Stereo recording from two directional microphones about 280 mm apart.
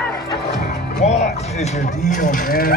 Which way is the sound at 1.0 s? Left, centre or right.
Left.